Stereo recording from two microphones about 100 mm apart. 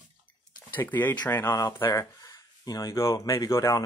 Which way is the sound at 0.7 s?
20° left (ahead or behind).